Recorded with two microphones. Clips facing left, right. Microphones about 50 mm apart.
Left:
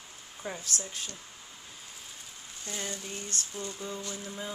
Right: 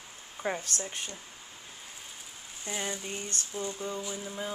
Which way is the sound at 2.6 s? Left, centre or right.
Centre.